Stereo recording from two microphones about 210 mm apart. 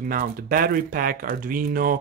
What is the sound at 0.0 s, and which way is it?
Speech, 40° right (ahead or behind).